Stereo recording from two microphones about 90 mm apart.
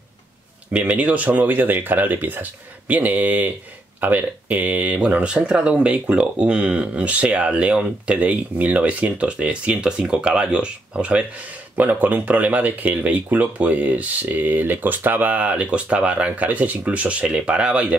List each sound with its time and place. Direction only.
0.7 s speech: 15° right (ahead or behind)